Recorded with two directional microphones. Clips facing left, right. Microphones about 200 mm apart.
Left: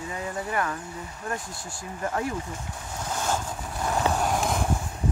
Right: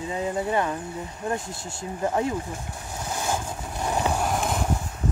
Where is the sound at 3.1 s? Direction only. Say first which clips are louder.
Even; 10° right (ahead or behind).